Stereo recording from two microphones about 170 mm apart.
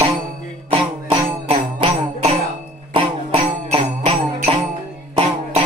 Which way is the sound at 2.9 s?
30° right (ahead or behind).